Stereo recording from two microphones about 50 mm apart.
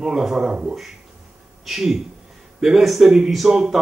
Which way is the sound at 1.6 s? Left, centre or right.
Centre.